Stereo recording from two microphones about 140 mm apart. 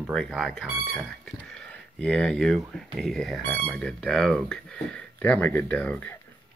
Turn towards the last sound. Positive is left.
turn(degrees=10)  # may be behind; listen again after turning